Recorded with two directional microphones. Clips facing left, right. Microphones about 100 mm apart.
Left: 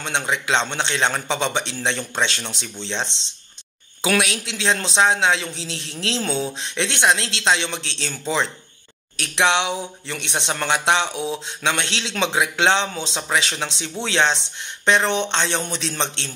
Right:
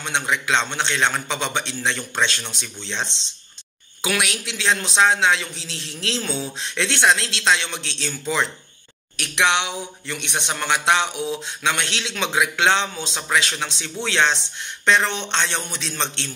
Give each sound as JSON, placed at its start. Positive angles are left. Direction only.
{"t": 0.0, "sound": "speech", "side_deg": 30}